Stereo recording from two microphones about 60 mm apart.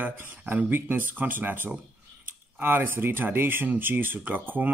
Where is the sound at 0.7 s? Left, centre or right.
Right.